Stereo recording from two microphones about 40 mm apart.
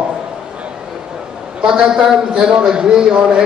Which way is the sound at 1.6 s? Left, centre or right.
Right.